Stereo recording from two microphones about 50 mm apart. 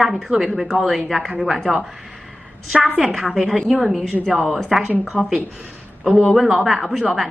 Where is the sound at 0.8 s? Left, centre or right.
Centre.